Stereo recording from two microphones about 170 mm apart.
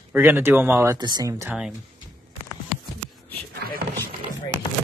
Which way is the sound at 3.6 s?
60° right (ahead or behind).